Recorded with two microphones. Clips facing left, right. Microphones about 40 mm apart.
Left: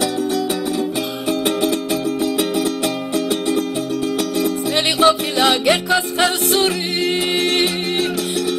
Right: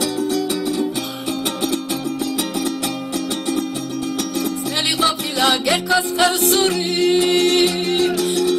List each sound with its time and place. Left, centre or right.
0.0 s music: left
5.0 s music: left
6.2 s music: centre